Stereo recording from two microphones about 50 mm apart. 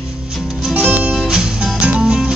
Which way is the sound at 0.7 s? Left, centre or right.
Right.